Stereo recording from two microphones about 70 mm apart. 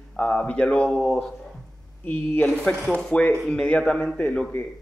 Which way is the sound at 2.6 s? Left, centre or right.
Centre.